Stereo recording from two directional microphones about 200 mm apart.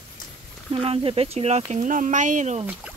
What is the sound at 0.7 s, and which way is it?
Speech, 30° right (ahead or behind).